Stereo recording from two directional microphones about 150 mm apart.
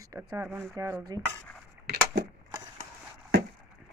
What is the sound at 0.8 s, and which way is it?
Dishes, 20° right (ahead or behind).